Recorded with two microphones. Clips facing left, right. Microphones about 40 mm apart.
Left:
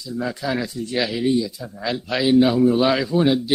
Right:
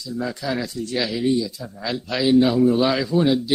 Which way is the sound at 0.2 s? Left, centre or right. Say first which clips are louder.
Left 1 dB; centre.